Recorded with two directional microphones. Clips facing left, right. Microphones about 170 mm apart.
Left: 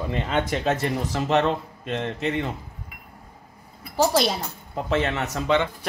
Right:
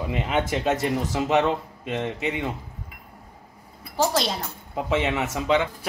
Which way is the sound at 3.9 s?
5° left (ahead or behind).